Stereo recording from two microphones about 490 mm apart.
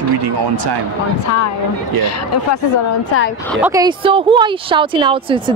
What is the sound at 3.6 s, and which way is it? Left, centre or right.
Speech, centre.